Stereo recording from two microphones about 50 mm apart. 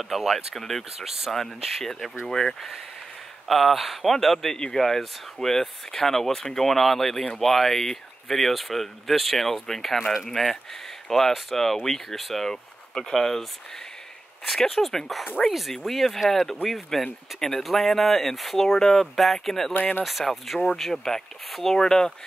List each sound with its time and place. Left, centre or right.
0.0 s speech: centre
0.6 s speech: centre
0.9 s speech: centre
1.3 s speech: centre
9.9 s speech: centre
10.3 s speech: centre
14.6 s speech: centre
19.7 s speech: left
20.0 s speech: centre